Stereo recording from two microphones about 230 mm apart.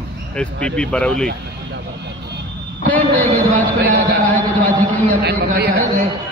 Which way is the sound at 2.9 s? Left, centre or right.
Centre.